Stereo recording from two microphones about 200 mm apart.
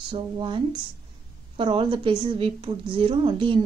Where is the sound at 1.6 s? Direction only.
25° right (ahead or behind).